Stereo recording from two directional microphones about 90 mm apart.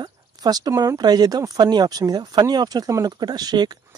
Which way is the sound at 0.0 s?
50° right (ahead or behind).